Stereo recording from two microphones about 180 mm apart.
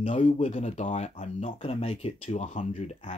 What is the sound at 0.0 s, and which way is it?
Speech, 40° left (ahead or behind).